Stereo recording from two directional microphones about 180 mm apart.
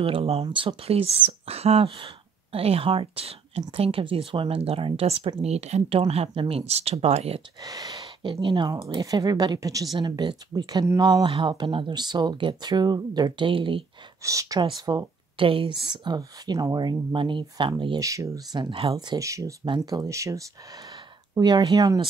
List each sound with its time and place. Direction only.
0.0 s speech: 35° right (ahead or behind)
7.6 s speech: 20° right (ahead or behind)
14.2 s speech: 15° right (ahead or behind)